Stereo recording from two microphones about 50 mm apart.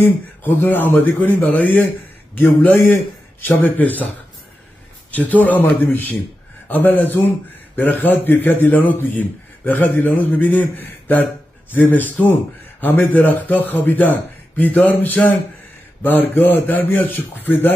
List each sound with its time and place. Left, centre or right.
0.0 s a man's voice: left
5.1 s a man's voice: left
5.6 s a man's voice: left